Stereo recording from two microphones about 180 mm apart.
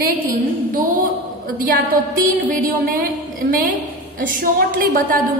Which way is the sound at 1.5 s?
50° right (ahead or behind).